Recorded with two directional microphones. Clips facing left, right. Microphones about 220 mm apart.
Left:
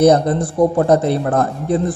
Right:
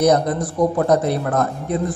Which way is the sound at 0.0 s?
30° left (ahead or behind).